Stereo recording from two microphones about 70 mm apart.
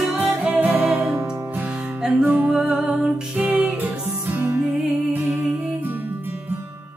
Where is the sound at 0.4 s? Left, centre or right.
Right.